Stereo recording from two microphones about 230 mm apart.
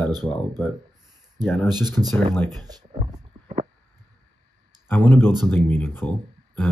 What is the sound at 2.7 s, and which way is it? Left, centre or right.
Speech, centre.